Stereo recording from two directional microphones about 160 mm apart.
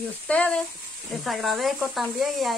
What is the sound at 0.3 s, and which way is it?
Speech, 10° left (ahead or behind).